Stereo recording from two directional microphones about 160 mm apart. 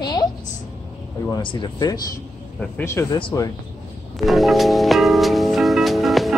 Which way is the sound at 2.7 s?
15° left (ahead or behind).